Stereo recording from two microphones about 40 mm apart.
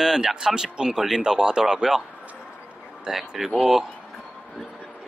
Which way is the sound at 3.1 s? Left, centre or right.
Centre.